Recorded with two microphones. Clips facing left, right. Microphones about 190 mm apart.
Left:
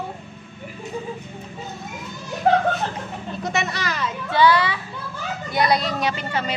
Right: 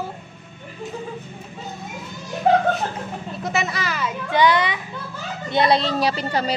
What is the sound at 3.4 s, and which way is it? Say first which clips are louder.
Speech: right 1 dB; centre (ahead or behind).